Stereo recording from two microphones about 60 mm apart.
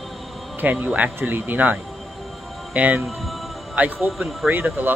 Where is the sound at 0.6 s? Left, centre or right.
Right.